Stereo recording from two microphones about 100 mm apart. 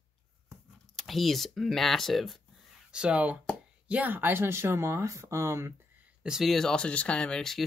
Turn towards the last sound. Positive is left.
turn(degrees=5)  # may be behind; listen again after turning